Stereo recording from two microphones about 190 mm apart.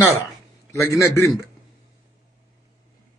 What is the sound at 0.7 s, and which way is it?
Speech, 15° left (ahead or behind).